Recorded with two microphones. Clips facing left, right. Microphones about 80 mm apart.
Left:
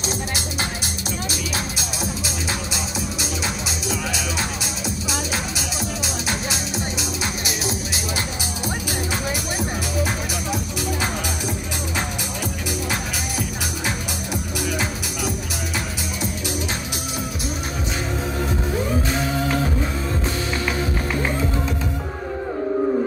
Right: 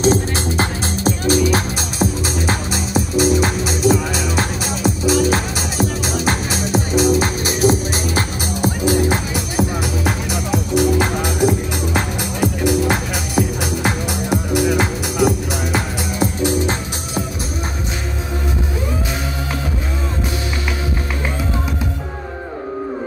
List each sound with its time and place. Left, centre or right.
0.0 s music: right
8.8 s music: right
14.7 s music: right